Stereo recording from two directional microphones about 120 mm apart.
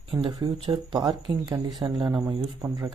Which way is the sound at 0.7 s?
35° right (ahead or behind).